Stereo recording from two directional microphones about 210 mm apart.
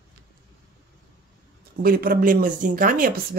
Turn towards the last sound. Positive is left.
turn(degrees=-45)  # may be behind; listen again after turning